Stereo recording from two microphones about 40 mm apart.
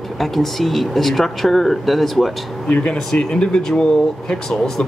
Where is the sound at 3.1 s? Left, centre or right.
Left.